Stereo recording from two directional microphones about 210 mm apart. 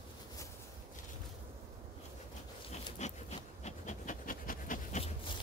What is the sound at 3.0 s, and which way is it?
Insect, 35° left (ahead or behind).